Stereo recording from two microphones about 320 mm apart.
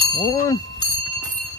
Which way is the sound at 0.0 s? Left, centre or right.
Centre.